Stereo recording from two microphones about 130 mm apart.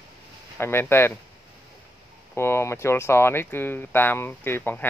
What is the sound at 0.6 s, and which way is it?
Speech, 20° left (ahead or behind).